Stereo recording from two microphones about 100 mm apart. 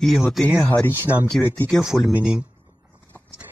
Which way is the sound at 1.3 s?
10° left (ahead or behind).